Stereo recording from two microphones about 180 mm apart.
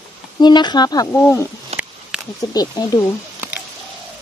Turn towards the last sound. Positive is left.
turn(degrees=20)  # may be behind; listen again after turning